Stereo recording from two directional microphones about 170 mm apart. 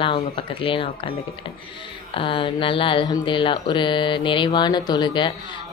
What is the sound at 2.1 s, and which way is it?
Speech, 30° left (ahead or behind).